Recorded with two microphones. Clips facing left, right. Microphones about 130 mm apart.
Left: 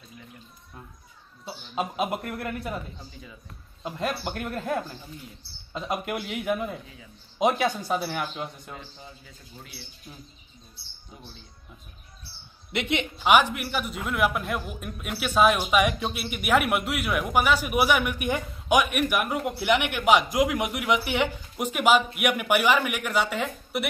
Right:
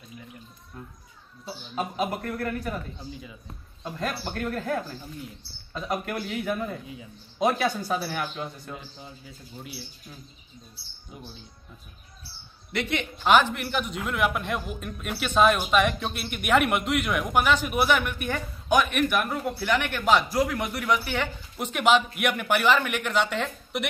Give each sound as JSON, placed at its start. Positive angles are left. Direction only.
{"t": 1.4, "sound": "a man's voice", "side_deg": 20}
{"t": 3.8, "sound": "a man's voice", "side_deg": 15}
{"t": 12.7, "sound": "a man's voice", "side_deg": 20}